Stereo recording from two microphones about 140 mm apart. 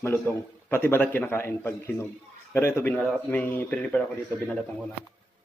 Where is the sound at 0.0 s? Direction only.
15° left (ahead or behind).